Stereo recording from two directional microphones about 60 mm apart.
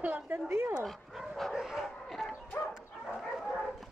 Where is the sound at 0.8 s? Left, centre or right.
Centre.